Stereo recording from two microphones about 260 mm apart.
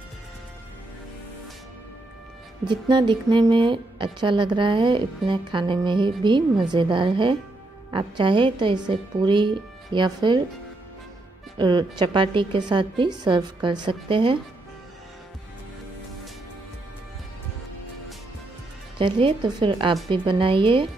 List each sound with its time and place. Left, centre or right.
2.6 s a woman's voice: centre
11.5 s a woman's voice: centre
18.9 s speech: centre